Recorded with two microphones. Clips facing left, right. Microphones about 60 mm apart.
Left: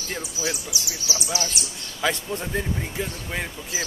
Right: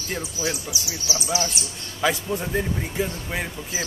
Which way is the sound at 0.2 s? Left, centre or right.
Right.